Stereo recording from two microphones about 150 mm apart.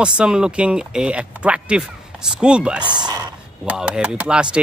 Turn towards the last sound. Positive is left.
turn(degrees=-5)  # may be behind; listen again after turning